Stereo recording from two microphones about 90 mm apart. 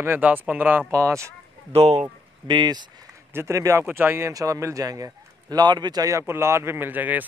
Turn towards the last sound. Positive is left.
turn(degrees=-20)  # may be behind; listen again after turning